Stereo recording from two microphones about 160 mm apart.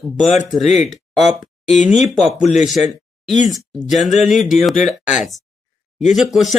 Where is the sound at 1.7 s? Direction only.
45° left (ahead or behind).